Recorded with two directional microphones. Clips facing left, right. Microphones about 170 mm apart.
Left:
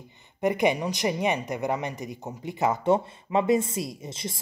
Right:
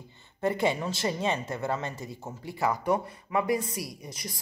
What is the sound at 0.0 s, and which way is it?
Speech, 15° left (ahead or behind).